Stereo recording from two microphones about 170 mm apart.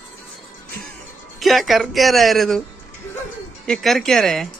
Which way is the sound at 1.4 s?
Centre (ahead or behind).